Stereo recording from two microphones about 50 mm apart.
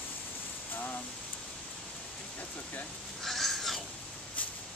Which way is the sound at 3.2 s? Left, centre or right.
Centre.